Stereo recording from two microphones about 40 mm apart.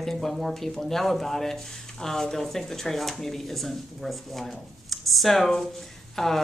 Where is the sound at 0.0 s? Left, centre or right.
Centre.